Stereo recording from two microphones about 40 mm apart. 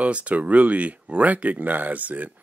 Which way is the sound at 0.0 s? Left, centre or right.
Right.